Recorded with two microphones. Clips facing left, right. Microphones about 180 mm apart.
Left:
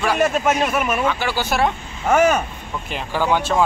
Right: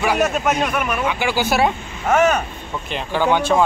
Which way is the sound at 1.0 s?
15° right (ahead or behind).